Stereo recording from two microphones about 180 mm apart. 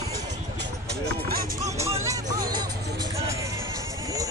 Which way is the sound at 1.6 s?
15° right (ahead or behind).